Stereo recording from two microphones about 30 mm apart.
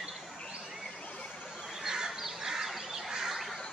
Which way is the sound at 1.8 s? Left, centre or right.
Right.